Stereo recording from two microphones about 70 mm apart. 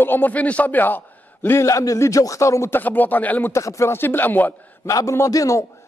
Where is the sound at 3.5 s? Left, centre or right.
Left.